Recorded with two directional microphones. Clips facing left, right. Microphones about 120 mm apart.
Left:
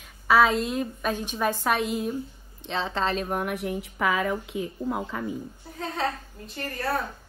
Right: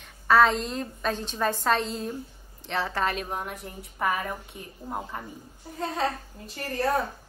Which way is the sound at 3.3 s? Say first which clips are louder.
Left 7 dB; 75° left (ahead or behind).